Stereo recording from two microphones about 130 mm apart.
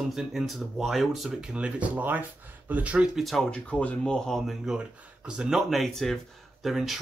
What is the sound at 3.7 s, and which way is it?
Speech, 10° left (ahead or behind).